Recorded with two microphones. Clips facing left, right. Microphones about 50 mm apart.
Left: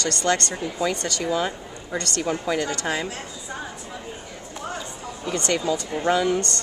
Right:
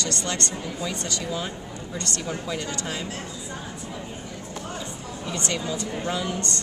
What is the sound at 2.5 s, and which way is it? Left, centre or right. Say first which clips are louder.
Speech: left 5 dB; left.